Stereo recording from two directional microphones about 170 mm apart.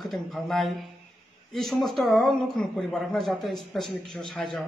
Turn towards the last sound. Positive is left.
turn(degrees=0)  # may be behind; listen again after turning